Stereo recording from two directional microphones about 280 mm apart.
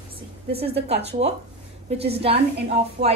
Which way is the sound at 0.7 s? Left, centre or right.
Right.